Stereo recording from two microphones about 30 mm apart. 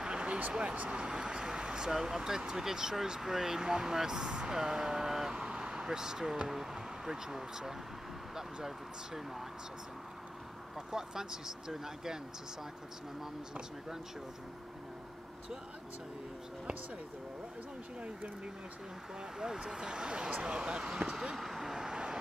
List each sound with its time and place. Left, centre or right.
0.0 s a sound: right
0.5 s speech: right
0.8 s vehicle: right
1.9 s speech: centre
5.3 s vehicle: right
5.9 s speech: centre
10.9 s speech: centre
19.6 s speech: right
21.4 s vehicle: centre
21.7 s vehicle: right